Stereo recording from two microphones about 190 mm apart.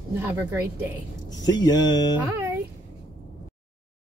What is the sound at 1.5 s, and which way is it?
Speech, 20° left (ahead or behind).